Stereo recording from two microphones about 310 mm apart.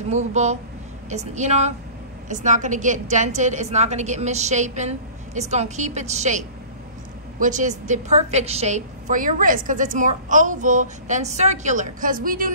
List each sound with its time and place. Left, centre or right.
0.1 s a woman's voice: right